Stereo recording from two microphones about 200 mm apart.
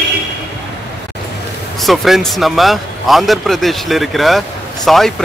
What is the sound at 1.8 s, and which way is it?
Speech, centre (ahead or behind).